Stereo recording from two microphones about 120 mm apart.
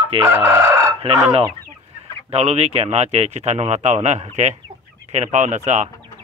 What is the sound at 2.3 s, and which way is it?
Speech, 60° right (ahead or behind).